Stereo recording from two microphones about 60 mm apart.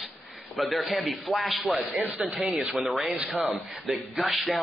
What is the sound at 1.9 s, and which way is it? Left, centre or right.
Speech, right.